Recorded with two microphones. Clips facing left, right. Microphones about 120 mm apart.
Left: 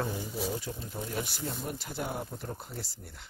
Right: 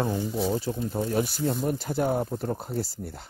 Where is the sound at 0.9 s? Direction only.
55° right (ahead or behind).